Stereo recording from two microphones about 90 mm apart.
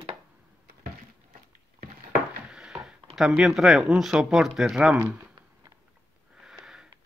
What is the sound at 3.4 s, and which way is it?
Speech, 5° right (ahead or behind).